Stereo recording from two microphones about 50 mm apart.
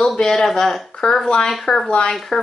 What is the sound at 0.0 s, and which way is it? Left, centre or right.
A woman's voice, centre.